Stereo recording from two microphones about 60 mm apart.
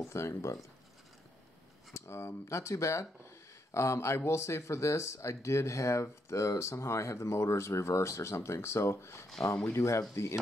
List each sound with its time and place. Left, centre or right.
0.0 s speech: left
2.0 s speech: left